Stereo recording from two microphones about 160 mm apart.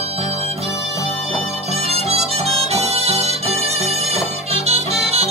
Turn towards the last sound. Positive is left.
turn(degrees=-40)  # may be behind; listen again after turning